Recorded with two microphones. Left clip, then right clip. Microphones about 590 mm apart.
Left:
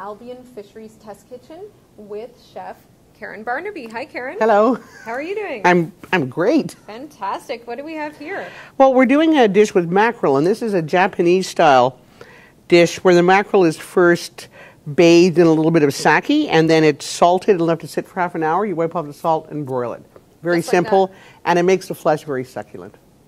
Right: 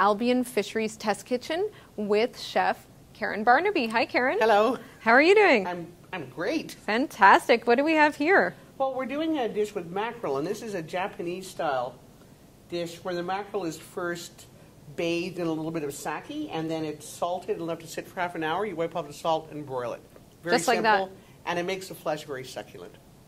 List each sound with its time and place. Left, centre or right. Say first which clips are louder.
0.0 s a woman's voice: right 9 dB; right
4.4 s speech: left 10 dB; left
5.0 s a woman's voice: right 9 dB; right
5.6 s speech: left 17 dB; left
6.9 s a woman's voice: right 8 dB; right
8.7 s speech: left 18 dB; left
20.4 s a woman's voice: left 5 dB; right
21.0 s speech: left 14 dB; left